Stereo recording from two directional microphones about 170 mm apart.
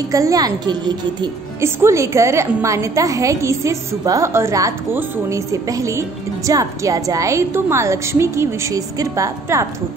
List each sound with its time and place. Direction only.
0.1 s a woman's voice: 20° right (ahead or behind)